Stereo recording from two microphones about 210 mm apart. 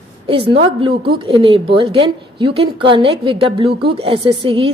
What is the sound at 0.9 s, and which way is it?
Speech, 50° right (ahead or behind).